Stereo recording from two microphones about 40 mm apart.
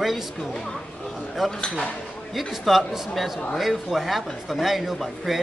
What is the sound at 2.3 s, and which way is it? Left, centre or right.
Speech, centre.